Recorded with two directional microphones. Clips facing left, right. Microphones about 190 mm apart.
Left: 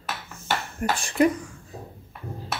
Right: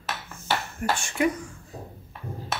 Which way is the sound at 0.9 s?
35° left (ahead or behind).